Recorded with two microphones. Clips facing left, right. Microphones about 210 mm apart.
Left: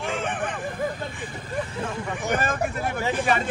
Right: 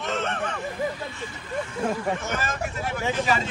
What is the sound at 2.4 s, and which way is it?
Speech, 55° left (ahead or behind).